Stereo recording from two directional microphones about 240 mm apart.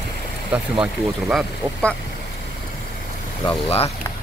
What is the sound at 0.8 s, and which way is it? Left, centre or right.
Speech, centre.